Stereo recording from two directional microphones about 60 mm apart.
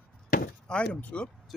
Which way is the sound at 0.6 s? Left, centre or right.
Centre.